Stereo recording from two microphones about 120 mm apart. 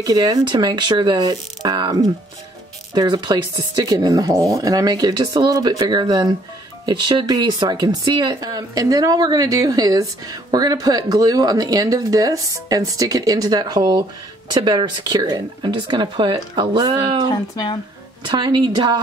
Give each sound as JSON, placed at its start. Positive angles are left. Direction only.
{"t": 0.0, "sound": "speech", "side_deg": -30}
{"t": 17.3, "sound": "speech", "side_deg": 35}
{"t": 18.2, "sound": "speech", "side_deg": -40}